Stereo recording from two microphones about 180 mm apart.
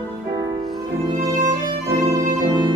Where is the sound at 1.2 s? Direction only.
15° right (ahead or behind).